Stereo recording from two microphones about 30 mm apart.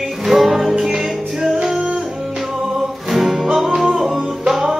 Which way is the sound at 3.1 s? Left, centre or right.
Centre.